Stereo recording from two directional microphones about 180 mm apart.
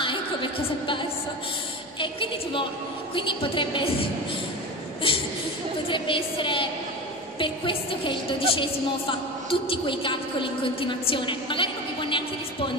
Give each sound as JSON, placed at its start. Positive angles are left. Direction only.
{"t": 0.0, "sound": "a sound", "side_deg": 30}
{"t": 2.0, "sound": "a woman's voice", "side_deg": 30}
{"t": 5.1, "sound": "chuckle", "side_deg": 30}
{"t": 5.9, "sound": "a woman's voice", "side_deg": 30}